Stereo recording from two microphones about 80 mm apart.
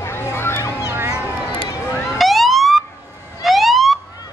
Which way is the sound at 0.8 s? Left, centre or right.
Right.